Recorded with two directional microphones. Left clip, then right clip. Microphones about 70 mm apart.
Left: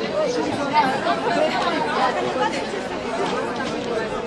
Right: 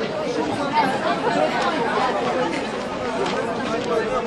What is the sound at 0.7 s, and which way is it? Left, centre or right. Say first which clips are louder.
Chatter: left 2 dB; centre.